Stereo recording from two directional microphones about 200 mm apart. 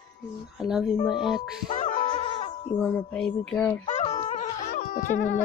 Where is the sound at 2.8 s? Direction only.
5° left (ahead or behind).